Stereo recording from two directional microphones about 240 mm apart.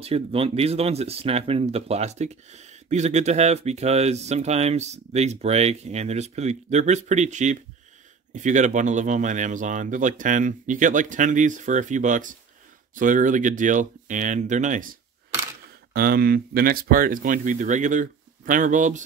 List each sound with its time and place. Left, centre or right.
0.0 s speech: right
15.9 s speech: right